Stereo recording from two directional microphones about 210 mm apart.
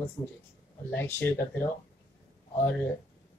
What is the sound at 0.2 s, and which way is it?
Speech, 15° left (ahead or behind).